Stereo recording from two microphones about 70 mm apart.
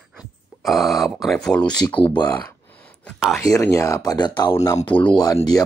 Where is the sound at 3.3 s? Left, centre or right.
Left.